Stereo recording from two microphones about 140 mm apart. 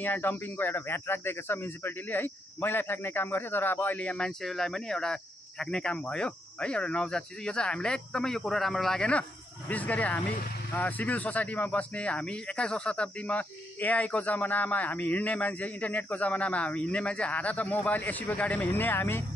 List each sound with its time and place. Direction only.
0.0 s speech: 15° left (ahead or behind)